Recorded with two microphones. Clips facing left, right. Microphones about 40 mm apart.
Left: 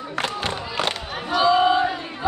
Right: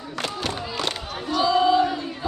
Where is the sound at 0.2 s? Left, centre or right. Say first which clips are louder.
Left 2 dB; left.